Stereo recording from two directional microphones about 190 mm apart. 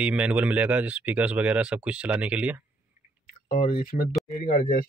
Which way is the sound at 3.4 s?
50° left (ahead or behind).